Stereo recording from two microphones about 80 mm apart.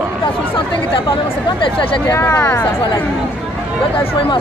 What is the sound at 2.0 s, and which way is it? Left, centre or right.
Speech, left.